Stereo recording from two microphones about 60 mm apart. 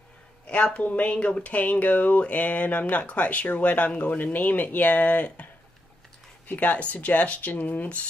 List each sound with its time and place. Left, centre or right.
0.5 s speech: left